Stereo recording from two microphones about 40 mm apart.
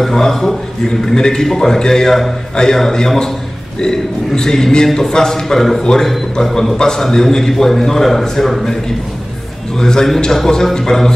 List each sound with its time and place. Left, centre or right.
0.0 s a man's voice: centre
0.8 s a man's voice: centre
9.8 s a man's voice: centre